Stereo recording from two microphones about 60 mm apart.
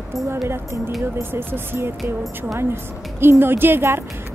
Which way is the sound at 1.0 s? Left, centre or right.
Right.